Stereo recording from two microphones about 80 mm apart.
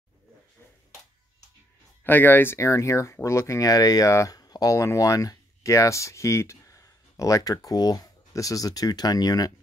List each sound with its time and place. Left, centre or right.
2.0 s speech: left